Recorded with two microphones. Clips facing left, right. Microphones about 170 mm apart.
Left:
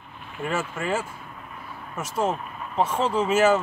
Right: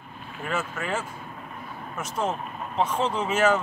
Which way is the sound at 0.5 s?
10° left (ahead or behind).